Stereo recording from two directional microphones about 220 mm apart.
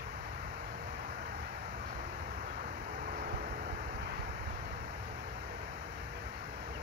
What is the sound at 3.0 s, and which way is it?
Vehicle, 40° right (ahead or behind).